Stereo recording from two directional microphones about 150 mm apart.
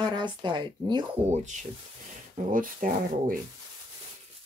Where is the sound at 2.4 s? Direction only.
55° right (ahead or behind).